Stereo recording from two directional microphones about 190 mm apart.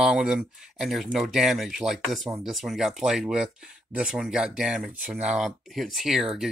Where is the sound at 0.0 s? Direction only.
Centre (ahead or behind).